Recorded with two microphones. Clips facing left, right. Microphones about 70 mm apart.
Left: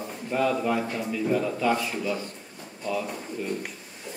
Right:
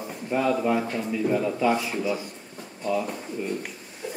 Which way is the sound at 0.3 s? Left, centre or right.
Centre.